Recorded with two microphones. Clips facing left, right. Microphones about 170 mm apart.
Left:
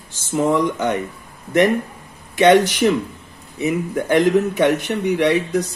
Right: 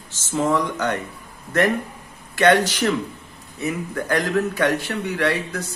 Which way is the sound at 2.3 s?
20° left (ahead or behind).